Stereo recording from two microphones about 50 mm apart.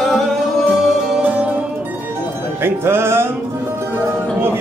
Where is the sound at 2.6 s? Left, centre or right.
Right.